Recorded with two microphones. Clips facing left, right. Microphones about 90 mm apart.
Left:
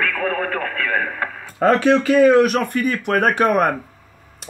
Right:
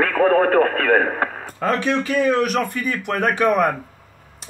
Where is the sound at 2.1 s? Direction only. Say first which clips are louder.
Left 7 dB; 50° left (ahead or behind).